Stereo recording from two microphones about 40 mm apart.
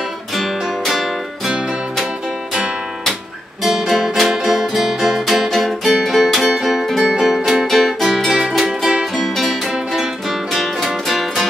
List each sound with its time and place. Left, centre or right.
0.3 s music: centre
1.5 s music: centre
3.9 s music: centre
8.4 s music: centre